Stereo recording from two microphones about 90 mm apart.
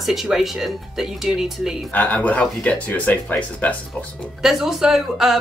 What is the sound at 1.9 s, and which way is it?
Speech, 15° left (ahead or behind).